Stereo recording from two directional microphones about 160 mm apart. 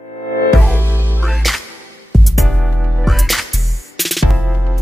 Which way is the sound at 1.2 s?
Centre (ahead or behind).